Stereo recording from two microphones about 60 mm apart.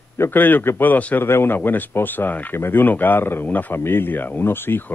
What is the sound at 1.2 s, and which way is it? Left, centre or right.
Speech, left.